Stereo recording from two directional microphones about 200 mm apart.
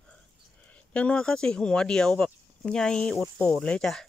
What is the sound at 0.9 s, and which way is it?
Speech, 5° left (ahead or behind).